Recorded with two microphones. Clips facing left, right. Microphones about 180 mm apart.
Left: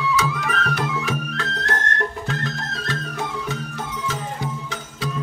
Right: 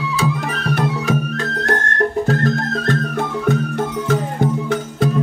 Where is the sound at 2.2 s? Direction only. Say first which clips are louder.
Right 10 dB; 50° right (ahead or behind).